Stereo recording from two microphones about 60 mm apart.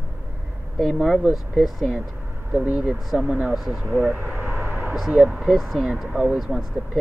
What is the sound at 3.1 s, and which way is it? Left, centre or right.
Speech, centre.